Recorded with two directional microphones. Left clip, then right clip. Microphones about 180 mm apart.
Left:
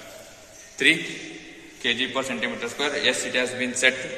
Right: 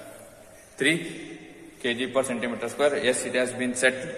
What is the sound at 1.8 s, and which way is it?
A man's voice, 65° right (ahead or behind).